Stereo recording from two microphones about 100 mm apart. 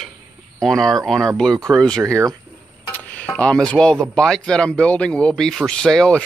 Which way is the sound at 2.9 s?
15° left (ahead or behind).